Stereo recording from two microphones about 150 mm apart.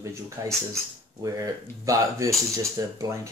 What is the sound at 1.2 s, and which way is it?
Speech, 20° right (ahead or behind).